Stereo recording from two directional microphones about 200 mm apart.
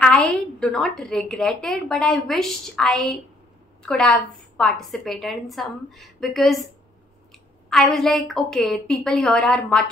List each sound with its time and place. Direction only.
0.0 s a woman's voice: 5° left (ahead or behind)
7.7 s a woman's voice: centre (ahead or behind)